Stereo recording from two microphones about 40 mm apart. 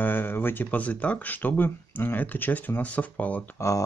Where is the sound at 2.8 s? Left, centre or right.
Left.